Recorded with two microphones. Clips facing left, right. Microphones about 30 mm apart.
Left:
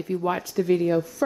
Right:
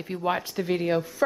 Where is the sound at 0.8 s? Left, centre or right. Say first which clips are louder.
Left 2 dB; right.